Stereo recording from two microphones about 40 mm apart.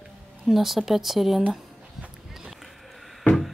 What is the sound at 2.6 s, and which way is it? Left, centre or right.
Basketball bounce, centre.